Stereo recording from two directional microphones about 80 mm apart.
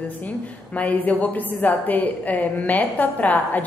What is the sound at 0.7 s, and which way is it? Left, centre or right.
A woman's voice, left.